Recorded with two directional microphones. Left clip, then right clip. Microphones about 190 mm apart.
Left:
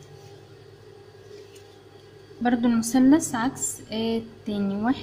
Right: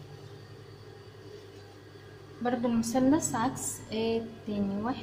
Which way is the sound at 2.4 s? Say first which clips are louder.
Left 6 dB; 50° left (ahead or behind).